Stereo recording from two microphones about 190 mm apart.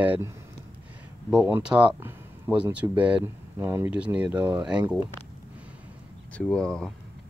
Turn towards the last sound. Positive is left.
turn(degrees=5)  # may be behind; listen again after turning